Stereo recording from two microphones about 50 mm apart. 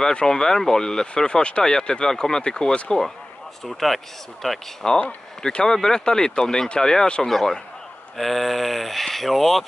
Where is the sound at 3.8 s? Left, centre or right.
Centre.